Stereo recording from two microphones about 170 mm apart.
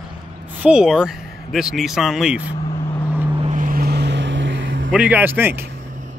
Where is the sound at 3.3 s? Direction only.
45° right (ahead or behind); by 4.9 s 90° right.